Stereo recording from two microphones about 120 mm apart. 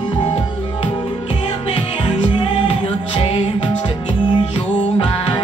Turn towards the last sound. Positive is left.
turn(degrees=50)  # may be behind; listen again after turning